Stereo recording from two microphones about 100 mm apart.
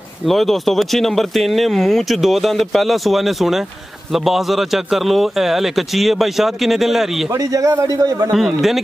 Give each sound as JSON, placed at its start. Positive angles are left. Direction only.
{"t": 0.3, "sound": "speech", "side_deg": 0}
{"t": 7.3, "sound": "a man's voice", "side_deg": -35}
{"t": 8.3, "sound": "speech", "side_deg": 0}